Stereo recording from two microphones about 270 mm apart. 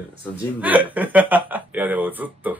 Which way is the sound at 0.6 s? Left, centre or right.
Centre.